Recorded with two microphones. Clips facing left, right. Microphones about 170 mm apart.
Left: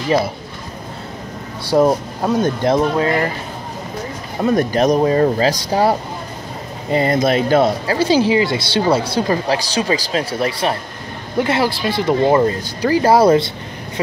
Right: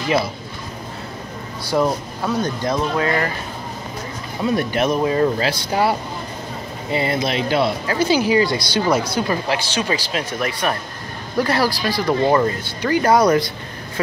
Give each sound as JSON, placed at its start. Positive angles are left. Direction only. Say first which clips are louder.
{"t": 1.7, "sound": "speech", "louder": "left 5 dB", "side_deg": 35}
{"t": 3.0, "sound": "speech", "louder": "left 3 dB", "side_deg": 25}
{"t": 4.4, "sound": "speech", "louder": "left 4 dB", "side_deg": 45}
{"t": 12.6, "sound": "speech", "louder": "left 3 dB", "side_deg": 35}